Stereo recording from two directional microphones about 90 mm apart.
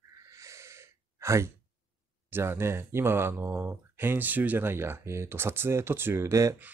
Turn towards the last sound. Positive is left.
turn(degrees=-35)  # may be behind; listen again after turning